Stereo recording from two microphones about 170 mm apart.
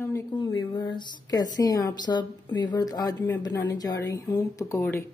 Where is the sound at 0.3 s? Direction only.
25° left (ahead or behind).